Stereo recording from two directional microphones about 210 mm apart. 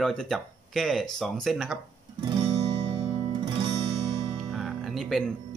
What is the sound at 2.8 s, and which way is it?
Music, 25° right (ahead or behind).